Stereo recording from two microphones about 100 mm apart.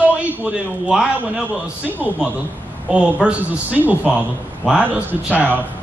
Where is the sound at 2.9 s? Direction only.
10° right (ahead or behind).